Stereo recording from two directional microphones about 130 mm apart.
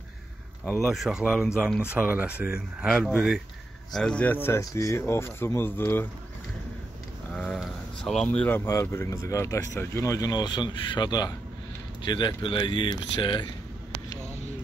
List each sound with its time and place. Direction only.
0.7 s speech: centre (ahead or behind)
2.9 s speech: 5° left (ahead or behind)
3.2 s speech: 5° right (ahead or behind)
3.9 s speech: 5° left (ahead or behind)
7.3 s a sound: 10° left (ahead or behind)
8.5 s speech: 20° left (ahead or behind); by 13.5 s 35° left (ahead or behind)